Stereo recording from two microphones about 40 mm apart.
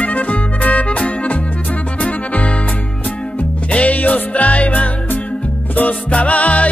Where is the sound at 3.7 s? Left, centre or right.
Left.